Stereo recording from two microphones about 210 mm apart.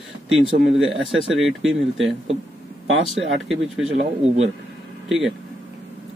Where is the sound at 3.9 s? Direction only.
30° right (ahead or behind).